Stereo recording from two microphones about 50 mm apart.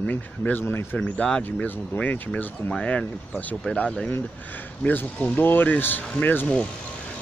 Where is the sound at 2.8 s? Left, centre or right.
Left.